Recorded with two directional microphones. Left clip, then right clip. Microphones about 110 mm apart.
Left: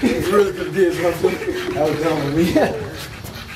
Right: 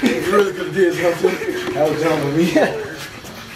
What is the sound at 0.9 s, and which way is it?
Speech, 10° right (ahead or behind).